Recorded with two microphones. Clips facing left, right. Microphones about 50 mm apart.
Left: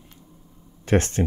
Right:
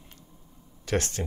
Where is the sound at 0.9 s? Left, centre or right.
Left.